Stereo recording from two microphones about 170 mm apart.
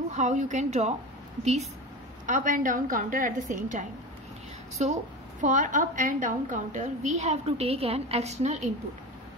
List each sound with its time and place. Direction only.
0.1 s a woman's voice: 45° right (ahead or behind)
5.4 s a woman's voice: 45° right (ahead or behind)